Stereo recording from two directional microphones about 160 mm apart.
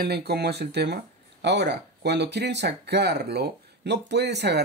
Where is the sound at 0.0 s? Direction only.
85° right.